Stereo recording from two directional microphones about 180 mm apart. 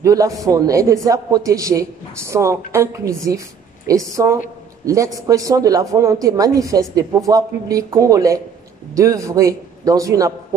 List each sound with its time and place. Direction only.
0.0 s a man's voice: 20° right (ahead or behind)